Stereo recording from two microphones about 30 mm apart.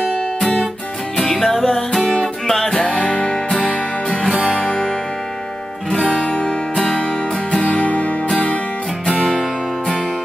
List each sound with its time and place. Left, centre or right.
0.4 s music: centre
3.0 s music: left
4.6 s music: left
5.9 s music: left
6.7 s music: centre
7.7 s music: left